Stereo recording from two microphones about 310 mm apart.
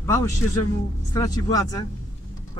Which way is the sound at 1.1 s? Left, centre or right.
Centre.